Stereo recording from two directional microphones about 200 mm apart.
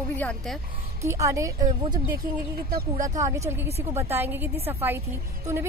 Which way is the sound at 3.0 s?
15° right (ahead or behind).